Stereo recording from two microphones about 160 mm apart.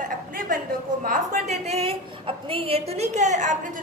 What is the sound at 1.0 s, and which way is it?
A woman's voice, 55° right (ahead or behind).